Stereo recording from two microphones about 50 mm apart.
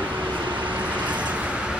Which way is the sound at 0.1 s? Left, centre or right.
Right.